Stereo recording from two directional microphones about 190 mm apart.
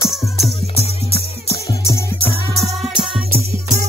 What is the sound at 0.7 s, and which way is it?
Music, 30° left (ahead or behind).